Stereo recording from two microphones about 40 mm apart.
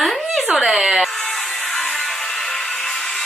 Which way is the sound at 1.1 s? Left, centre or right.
Centre.